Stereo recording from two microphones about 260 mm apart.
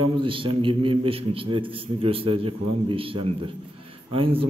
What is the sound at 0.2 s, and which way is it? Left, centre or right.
A man's voice, centre.